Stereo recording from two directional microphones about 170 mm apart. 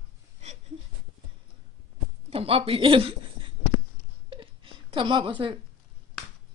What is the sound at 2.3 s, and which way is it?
A woman's voice, 35° right (ahead or behind).